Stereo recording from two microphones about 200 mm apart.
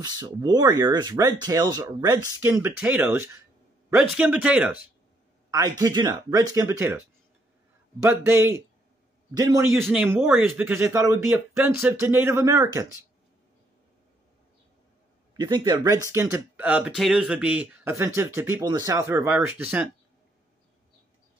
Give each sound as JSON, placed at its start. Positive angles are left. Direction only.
{"t": 0.0, "sound": "speech", "side_deg": -20}
{"t": 5.5, "sound": "speech", "side_deg": -20}
{"t": 8.3, "sound": "speech", "side_deg": -10}
{"t": 15.3, "sound": "speech", "side_deg": -20}